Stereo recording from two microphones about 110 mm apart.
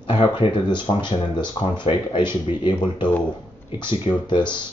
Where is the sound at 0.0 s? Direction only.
45° left (ahead or behind).